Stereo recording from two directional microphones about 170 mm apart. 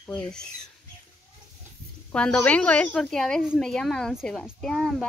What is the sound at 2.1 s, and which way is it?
A woman's voice, 5° left (ahead or behind).